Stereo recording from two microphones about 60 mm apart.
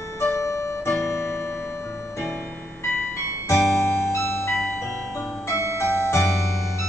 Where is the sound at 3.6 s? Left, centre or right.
Left.